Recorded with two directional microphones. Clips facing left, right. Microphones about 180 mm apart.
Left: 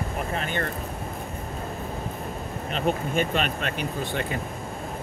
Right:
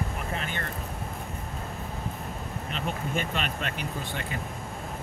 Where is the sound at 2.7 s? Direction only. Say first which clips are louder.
Left 7 dB; 60° left (ahead or behind).